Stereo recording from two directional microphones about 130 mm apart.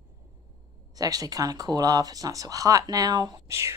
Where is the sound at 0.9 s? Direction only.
30° right (ahead or behind).